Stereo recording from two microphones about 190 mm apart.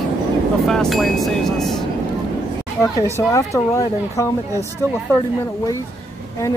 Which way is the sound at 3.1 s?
15° left (ahead or behind).